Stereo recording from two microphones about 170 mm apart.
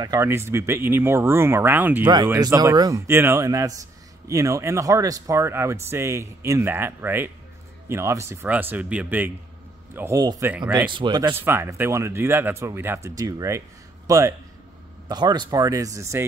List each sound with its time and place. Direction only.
0.0 s a man's voice: 20° right (ahead or behind)